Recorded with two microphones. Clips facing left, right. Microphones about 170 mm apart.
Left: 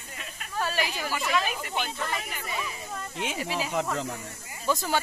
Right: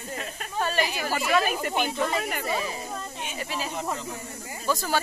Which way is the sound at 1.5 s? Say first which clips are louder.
Right 6 dB; 50° right (ahead or behind).